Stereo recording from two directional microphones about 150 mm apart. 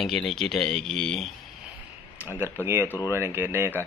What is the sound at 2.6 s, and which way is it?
Speech, 15° right (ahead or behind).